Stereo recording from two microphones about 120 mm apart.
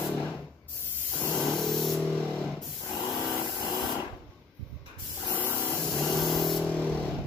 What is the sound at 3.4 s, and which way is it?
Spray, 40° left (ahead or behind).